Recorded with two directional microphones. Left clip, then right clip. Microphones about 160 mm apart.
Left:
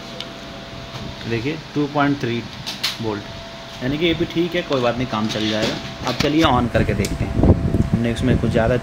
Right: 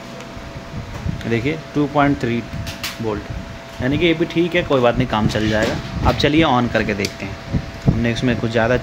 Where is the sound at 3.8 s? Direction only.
20° right (ahead or behind).